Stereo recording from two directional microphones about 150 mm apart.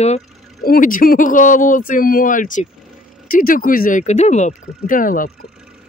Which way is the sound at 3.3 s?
70° left (ahead or behind).